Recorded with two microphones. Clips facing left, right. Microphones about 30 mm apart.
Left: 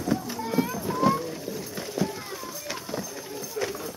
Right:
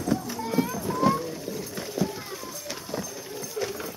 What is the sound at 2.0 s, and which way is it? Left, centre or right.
Run, centre.